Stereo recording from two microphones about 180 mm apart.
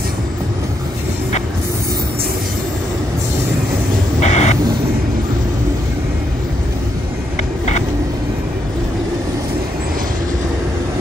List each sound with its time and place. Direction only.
4.2 s vehicle: 40° left (ahead or behind)